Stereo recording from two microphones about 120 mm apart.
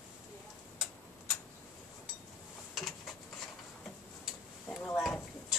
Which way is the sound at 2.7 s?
Centre (ahead or behind).